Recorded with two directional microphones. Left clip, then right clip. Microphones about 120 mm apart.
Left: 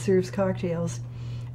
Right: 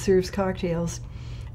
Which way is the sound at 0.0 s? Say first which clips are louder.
Right 2 dB; 40° right (ahead or behind).